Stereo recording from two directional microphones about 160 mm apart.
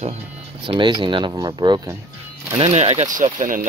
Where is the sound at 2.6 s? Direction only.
40° right (ahead or behind); by 3.7 s 55° right (ahead or behind).